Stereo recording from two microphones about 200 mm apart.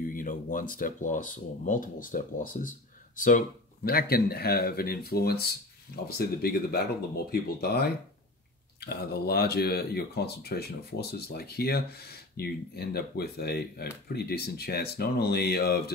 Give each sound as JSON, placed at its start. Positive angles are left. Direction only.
{"t": 0.1, "sound": "speech", "side_deg": 40}